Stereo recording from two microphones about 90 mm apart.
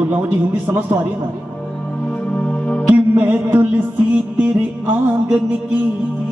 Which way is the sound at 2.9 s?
15° right (ahead or behind).